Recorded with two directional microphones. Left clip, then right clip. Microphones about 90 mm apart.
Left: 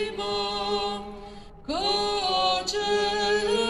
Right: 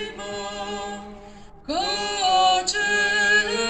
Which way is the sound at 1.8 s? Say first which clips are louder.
Right 2 dB; 40° left (ahead or behind).